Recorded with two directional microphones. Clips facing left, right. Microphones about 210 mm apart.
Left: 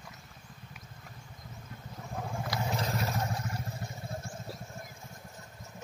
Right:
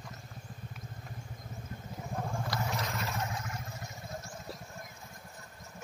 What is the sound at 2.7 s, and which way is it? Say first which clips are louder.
Vehicle: left 3 dB; 35° left (ahead or behind).